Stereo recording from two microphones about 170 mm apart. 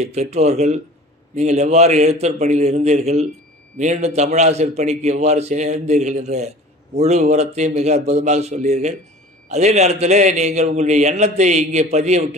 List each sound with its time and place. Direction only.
0.0 s a man's voice: 40° right (ahead or behind)